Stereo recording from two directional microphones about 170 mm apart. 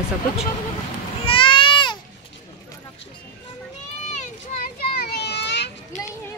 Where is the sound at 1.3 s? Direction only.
30° left (ahead or behind).